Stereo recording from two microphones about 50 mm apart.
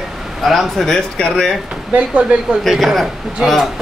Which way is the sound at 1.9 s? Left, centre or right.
Right.